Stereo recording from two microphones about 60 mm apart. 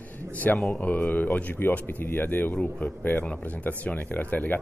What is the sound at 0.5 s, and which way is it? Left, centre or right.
Speech, centre.